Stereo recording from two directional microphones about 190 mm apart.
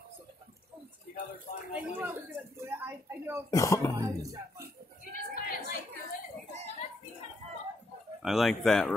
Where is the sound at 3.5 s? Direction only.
15° left (ahead or behind).